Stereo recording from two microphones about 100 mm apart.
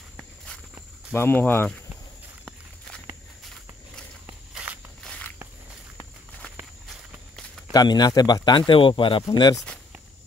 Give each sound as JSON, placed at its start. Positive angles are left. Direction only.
{"t": 1.1, "sound": "speech", "side_deg": 20}
{"t": 4.3, "sound": "walk", "side_deg": -15}
{"t": 7.7, "sound": "a man's voice", "side_deg": 40}